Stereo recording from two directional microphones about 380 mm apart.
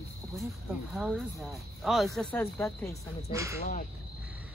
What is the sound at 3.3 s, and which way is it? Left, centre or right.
Speech, centre.